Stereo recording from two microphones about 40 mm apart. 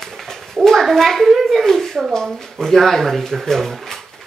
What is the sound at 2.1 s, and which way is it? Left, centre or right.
Speech, centre.